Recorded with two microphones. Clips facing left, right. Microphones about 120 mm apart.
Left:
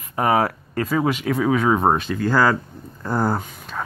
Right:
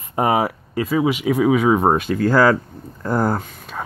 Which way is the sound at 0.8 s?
5° right (ahead or behind).